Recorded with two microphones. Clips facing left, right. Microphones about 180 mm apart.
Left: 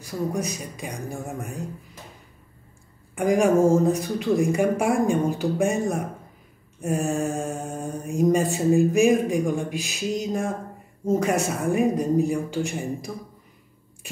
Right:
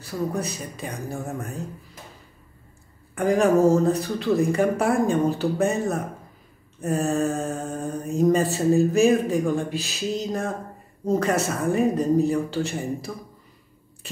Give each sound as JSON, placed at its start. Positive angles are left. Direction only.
{"t": 0.0, "sound": "mantra", "side_deg": 15}
{"t": 3.2, "sound": "mantra", "side_deg": 15}